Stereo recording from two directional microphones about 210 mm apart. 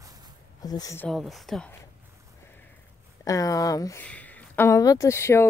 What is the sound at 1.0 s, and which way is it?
Speech, centre (ahead or behind).